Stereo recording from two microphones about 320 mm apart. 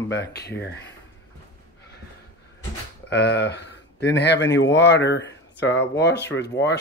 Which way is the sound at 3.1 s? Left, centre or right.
Left.